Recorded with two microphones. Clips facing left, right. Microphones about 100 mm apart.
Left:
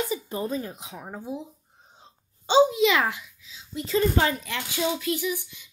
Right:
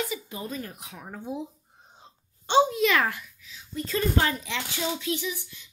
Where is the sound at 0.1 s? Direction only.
35° left (ahead or behind).